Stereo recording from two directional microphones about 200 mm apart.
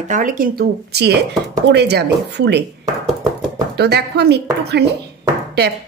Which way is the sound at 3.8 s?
55° right (ahead or behind).